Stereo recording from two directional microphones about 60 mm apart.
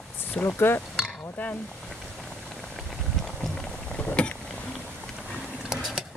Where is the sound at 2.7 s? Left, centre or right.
Centre; by 4.4 s left.